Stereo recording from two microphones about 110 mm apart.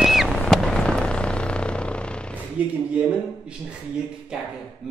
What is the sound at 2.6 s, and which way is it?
Speech, 15° right (ahead or behind).